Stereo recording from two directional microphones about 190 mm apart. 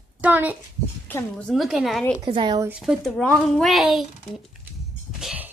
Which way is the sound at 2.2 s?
25° right (ahead or behind).